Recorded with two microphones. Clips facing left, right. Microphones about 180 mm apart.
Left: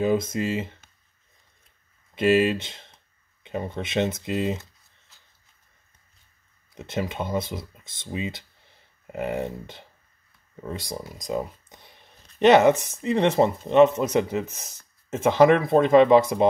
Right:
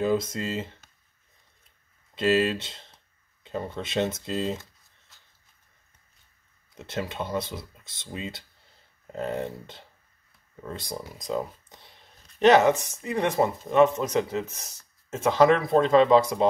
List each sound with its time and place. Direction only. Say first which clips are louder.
0.0 s speech: left 2 dB; 15° left (ahead or behind)
2.1 s speech: left 3 dB; 15° left (ahead or behind)
6.8 s speech: left 3 dB; 15° left (ahead or behind)